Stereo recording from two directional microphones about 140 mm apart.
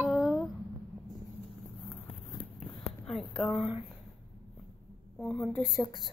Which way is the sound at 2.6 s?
Centre (ahead or behind).